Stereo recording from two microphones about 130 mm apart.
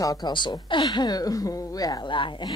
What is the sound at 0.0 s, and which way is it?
Speech, 30° left (ahead or behind).